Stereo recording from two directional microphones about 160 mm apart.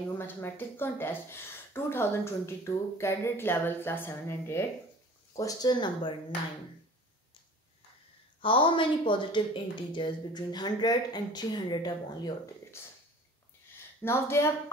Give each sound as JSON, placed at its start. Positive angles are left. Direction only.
{"t": 0.4, "sound": "speech", "side_deg": 15}
{"t": 8.4, "sound": "speech", "side_deg": 30}
{"t": 14.0, "sound": "speech", "side_deg": 15}